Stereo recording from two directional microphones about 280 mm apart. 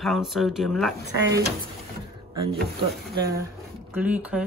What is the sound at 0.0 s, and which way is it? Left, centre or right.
Speech, centre.